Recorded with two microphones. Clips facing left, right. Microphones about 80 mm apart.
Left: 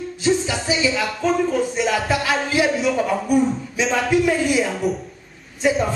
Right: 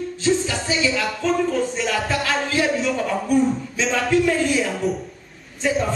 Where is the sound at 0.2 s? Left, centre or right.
Centre.